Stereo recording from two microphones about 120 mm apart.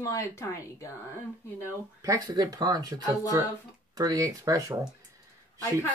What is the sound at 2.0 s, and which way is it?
Speech, 30° right (ahead or behind).